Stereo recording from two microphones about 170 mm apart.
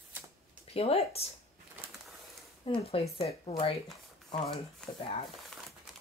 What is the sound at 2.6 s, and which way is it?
A woman's voice, 30° left (ahead or behind).